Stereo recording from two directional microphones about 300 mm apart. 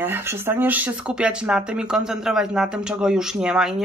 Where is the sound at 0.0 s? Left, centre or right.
Centre.